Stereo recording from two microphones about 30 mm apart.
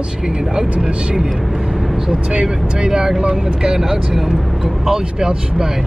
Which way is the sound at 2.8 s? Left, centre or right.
Right.